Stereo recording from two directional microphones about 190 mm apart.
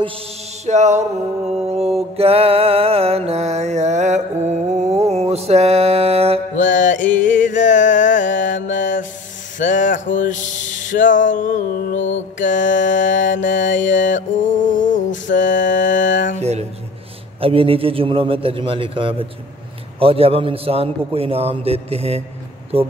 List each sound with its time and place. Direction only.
0.7 s a man's voice: 35° right (ahead or behind)
1.7 s mantra: 35° right (ahead or behind)
6.7 s music: 40° left (ahead or behind)
8.4 s mantra: 45° left (ahead or behind)
8.6 s mantra: 75° left (ahead or behind)
9.6 s a sound: 40° left (ahead or behind)
15.2 s mantra: 45° left (ahead or behind)
16.3 s a sound: 35° right (ahead or behind)
17.4 s a man's voice: 30° right (ahead or behind)